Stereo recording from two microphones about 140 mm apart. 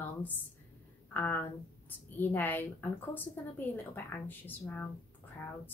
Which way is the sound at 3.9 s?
15° left (ahead or behind).